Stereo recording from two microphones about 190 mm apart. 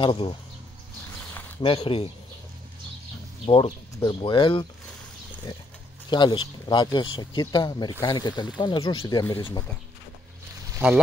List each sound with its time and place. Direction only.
0.0 s speech: 25° left (ahead or behind)
1.6 s speech: 30° left (ahead or behind)
3.4 s speech: 25° left (ahead or behind)
6.0 s speech: 25° left (ahead or behind)